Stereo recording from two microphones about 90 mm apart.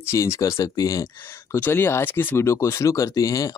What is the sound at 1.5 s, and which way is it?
Speech, 25° left (ahead or behind).